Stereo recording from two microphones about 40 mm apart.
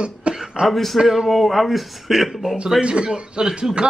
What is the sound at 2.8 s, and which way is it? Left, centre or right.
A man's voice, right.